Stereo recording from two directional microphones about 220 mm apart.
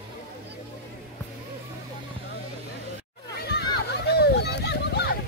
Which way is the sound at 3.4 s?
50° left (ahead or behind).